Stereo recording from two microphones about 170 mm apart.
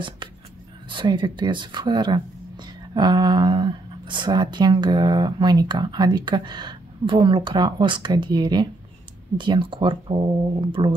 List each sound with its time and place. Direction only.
0.8 s speech: 30° right (ahead or behind)